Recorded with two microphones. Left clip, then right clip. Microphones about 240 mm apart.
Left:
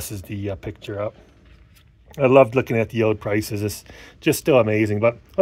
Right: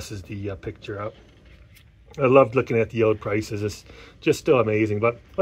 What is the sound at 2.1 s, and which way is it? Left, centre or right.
Speech, left.